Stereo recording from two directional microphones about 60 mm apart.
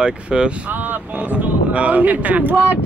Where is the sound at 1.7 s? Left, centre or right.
Right.